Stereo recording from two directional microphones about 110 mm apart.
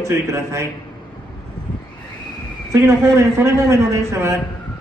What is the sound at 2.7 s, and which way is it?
A man's voice, 25° right (ahead or behind).